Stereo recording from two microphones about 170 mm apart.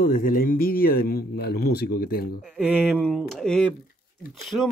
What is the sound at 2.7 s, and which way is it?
Speech, 10° right (ahead or behind).